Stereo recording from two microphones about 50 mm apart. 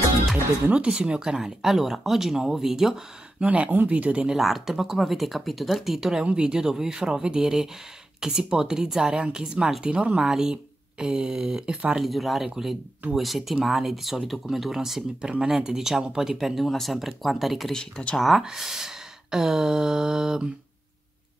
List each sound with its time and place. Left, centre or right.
0.7 s speech: right
3.4 s speech: right
4.3 s speech: centre
12.0 s speech: centre
18.0 s speech: left
18.4 s speech: centre